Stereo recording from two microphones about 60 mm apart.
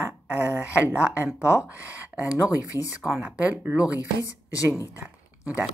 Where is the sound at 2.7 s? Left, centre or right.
Left.